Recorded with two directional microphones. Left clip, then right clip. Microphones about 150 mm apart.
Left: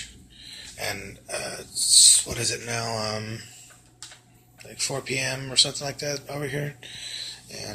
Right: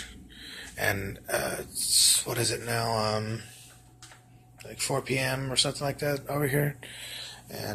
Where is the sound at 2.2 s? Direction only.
15° right (ahead or behind).